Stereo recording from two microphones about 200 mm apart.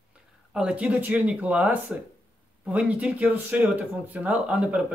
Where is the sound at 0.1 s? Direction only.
5° right (ahead or behind).